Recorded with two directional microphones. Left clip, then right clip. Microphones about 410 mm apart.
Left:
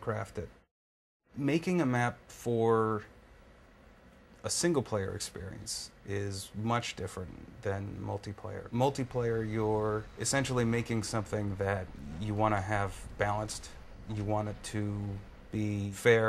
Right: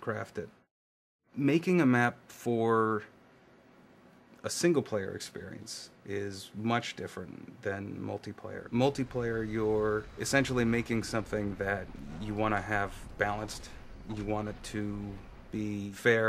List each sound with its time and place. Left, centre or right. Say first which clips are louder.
0.0 s speech: even; centre
4.4 s speech: right 2 dB; centre
14.0 s speech: right 1 dB; centre
14.6 s speech: right 1 dB; centre